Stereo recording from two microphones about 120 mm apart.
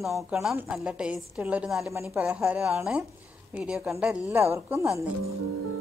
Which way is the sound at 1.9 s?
25° right (ahead or behind).